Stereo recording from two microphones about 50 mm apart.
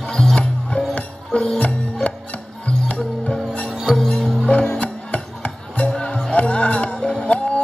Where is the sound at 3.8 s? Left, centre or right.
Centre.